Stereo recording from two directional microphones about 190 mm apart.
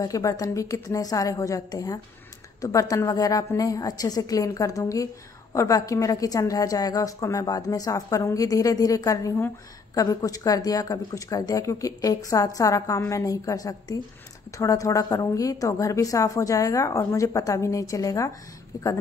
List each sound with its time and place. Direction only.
0.0 s a woman's voice: 15° left (ahead or behind)